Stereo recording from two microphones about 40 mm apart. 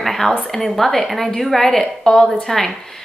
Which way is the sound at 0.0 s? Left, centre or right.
Centre.